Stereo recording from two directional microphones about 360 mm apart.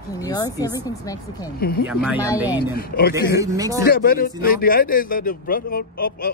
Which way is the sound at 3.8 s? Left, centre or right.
Left.